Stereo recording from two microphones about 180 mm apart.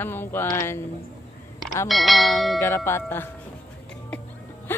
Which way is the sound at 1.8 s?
Centre (ahead or behind).